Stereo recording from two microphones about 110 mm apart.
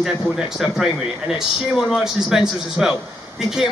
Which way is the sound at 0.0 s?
5° right (ahead or behind).